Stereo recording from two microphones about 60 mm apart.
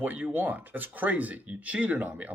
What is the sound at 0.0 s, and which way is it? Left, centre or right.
Speech, right.